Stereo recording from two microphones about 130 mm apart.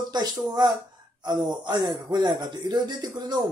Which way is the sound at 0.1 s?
30° right (ahead or behind).